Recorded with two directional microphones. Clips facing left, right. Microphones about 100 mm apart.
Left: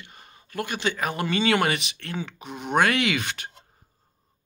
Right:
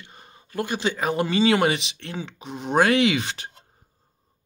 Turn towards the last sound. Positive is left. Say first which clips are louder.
# right 5 dB
turn(degrees=-30)  # may be behind; listen again after turning